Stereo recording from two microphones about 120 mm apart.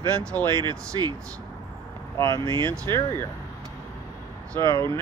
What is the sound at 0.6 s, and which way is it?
Speech, 35° right (ahead or behind).